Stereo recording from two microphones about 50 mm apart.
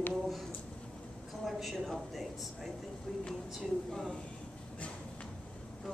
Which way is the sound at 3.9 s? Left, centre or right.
Centre.